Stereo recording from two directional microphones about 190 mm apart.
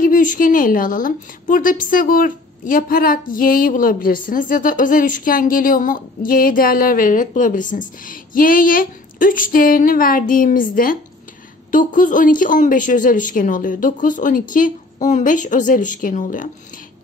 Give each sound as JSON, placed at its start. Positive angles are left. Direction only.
{"t": 0.0, "sound": "a woman's voice", "side_deg": 45}